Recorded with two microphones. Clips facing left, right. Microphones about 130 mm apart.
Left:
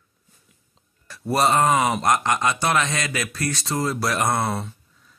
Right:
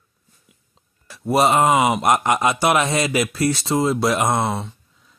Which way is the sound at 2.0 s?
25° right (ahead or behind).